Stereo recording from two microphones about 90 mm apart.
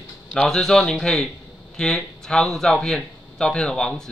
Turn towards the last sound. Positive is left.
turn(degrees=10)  # may be behind; listen again after turning